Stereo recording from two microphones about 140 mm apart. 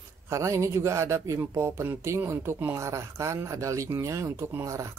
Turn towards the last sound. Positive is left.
turn(degrees=-20)  # may be behind; listen again after turning